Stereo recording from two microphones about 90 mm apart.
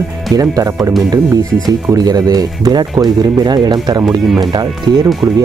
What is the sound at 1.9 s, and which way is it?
Speech, 45° right (ahead or behind).